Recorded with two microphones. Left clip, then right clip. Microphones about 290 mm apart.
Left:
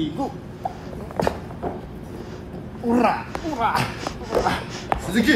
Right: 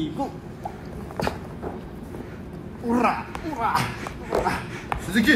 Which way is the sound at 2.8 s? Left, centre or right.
Centre.